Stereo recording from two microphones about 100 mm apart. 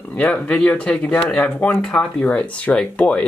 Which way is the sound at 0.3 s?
10° left (ahead or behind).